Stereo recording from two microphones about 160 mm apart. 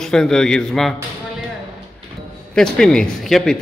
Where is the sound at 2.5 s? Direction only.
5° left (ahead or behind).